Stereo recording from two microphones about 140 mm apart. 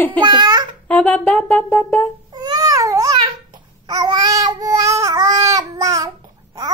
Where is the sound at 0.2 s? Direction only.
30° right (ahead or behind).